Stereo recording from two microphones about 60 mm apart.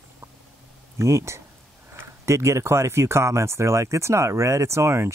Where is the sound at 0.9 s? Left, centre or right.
Right.